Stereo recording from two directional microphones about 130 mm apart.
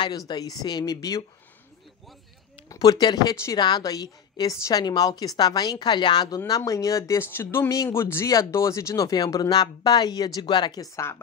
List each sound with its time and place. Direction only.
0.3 s a woman's voice: 30° left (ahead or behind)
2.7 s a woman's voice: 30° left (ahead or behind)